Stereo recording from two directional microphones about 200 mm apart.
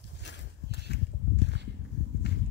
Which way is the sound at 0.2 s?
60° left (ahead or behind).